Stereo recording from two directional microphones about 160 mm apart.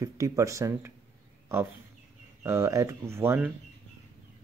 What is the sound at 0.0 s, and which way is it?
Speech, 20° right (ahead or behind).